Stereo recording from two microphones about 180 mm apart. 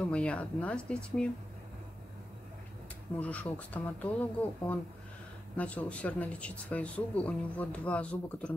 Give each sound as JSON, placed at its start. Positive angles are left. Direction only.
{"t": 0.0, "sound": "speech", "side_deg": 5}
{"t": 3.2, "sound": "speech", "side_deg": 10}